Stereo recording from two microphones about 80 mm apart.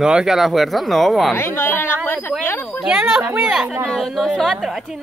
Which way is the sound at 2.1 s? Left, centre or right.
Left.